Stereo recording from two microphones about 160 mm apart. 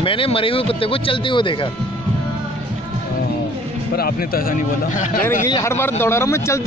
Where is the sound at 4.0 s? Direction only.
70° left (ahead or behind).